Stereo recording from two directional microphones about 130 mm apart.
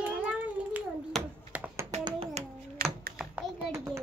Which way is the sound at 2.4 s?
55° right (ahead or behind).